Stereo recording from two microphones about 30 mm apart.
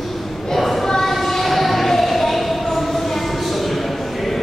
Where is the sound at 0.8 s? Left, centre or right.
Centre.